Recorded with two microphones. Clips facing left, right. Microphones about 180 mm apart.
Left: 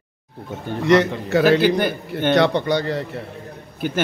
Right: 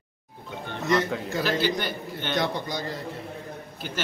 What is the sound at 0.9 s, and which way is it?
A man's voice, 70° left (ahead or behind).